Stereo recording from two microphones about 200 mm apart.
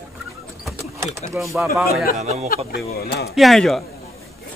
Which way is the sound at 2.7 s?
55° left (ahead or behind).